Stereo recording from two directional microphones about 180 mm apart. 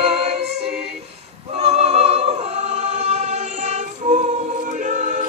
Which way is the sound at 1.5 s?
35° right (ahead or behind).